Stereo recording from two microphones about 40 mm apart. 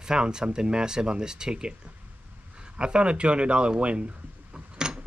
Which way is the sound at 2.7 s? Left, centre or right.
Right.